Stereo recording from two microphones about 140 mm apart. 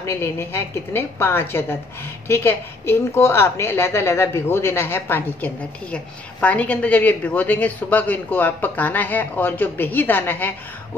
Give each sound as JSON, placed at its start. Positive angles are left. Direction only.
{"t": 0.0, "sound": "a woman's voice", "side_deg": 15}